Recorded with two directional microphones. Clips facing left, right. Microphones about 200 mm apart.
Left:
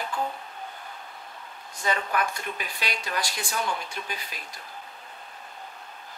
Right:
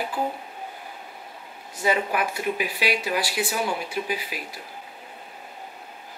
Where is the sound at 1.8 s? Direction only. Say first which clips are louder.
Right 4 dB; 10° right (ahead or behind).